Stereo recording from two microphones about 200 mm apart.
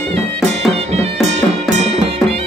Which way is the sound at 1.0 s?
35° right (ahead or behind).